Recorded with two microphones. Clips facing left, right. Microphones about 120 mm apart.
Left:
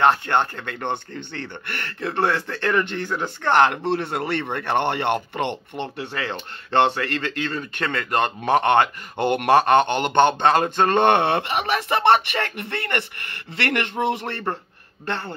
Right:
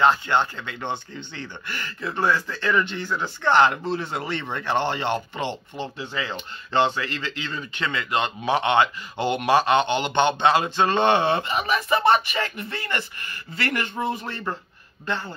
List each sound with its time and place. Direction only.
0.0 s speech: 55° left (ahead or behind)
15.0 s speech: 60° left (ahead or behind)